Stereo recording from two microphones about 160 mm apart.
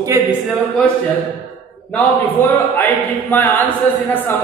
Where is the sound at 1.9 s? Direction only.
10° left (ahead or behind).